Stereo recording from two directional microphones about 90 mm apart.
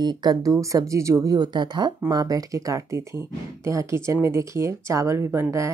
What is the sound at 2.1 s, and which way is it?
Speech, 45° right (ahead or behind).